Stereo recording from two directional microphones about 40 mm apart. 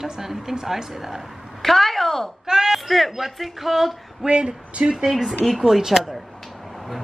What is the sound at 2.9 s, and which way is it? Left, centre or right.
A woman's voice, centre.